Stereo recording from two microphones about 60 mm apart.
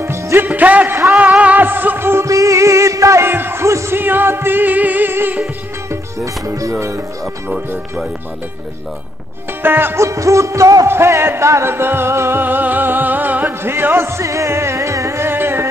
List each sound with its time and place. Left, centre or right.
0.0 s music: right
0.5 s speech: right
1.3 s music: right
2.2 s music: right
3.3 s music: right
3.6 s music: right
4.0 s music: right
6.1 s speech: right
6.7 s speech: right
9.6 s music: right
9.9 s music: right
10.9 s music: right
14.2 s music: right